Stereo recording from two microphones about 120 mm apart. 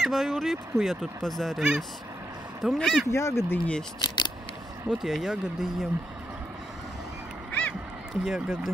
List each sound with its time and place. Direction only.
0.0 s speech: centre (ahead or behind)
3.1 s speech: 20° left (ahead or behind)
4.8 s speech: 5° right (ahead or behind)
7.5 s duck: 10° left (ahead or behind)
8.3 s speech: 5° right (ahead or behind)